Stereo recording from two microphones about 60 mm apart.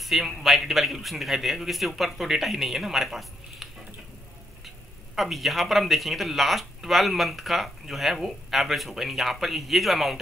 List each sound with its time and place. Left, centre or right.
0.0 s speech: centre
5.1 s speech: centre